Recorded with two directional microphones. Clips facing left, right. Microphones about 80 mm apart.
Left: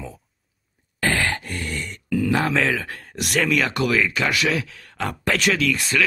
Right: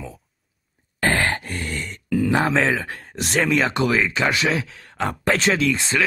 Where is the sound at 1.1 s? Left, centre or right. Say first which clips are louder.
Right 2 dB; right.